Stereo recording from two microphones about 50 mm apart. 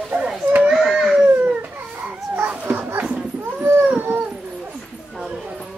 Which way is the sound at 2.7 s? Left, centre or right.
Right.